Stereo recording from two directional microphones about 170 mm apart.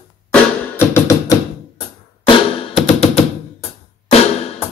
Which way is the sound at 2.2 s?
35° left (ahead or behind).